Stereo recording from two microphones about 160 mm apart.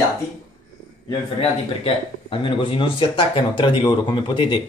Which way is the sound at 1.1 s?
35° left (ahead or behind).